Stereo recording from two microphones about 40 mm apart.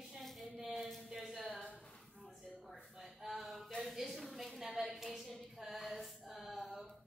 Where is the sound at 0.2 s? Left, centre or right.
Centre.